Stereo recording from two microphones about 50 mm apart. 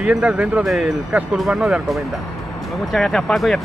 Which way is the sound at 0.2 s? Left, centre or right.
Right.